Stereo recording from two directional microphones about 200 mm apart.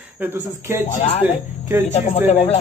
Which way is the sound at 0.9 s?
30° left (ahead or behind).